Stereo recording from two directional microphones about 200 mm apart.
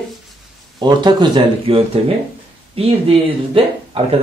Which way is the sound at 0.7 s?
20° right (ahead or behind).